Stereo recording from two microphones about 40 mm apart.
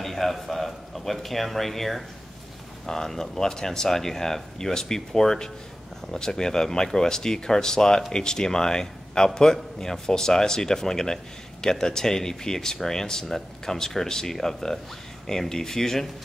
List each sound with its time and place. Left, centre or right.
0.0 s a man's voice: centre